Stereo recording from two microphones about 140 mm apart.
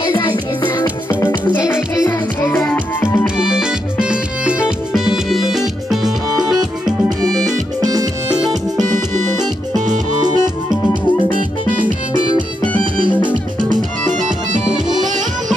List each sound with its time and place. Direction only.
0.8 s music: 15° left (ahead or behind)
1.6 s music: 5° right (ahead or behind)
2.0 s music: 20° left (ahead or behind)
3.3 s music: 5° right (ahead or behind)
7.8 s music: 25° right (ahead or behind)
10.2 s music: 30° right (ahead or behind)
14.2 s music: 65° right (ahead or behind)